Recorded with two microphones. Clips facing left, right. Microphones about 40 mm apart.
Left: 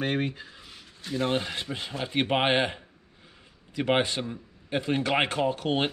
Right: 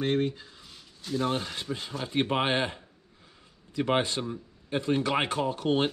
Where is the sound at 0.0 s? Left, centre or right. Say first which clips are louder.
Right 1 dB; left.